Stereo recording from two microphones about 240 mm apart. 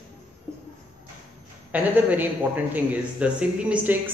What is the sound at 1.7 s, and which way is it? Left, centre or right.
Speech, centre.